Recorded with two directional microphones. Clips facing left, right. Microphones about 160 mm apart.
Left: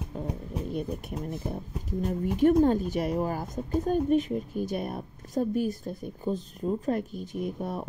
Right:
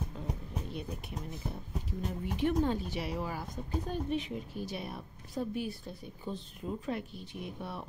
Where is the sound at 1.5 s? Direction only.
50° left (ahead or behind).